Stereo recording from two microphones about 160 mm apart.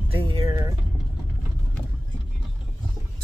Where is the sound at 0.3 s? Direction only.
25° right (ahead or behind).